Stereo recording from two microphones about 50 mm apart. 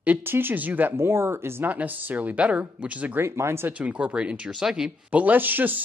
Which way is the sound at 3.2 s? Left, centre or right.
Right.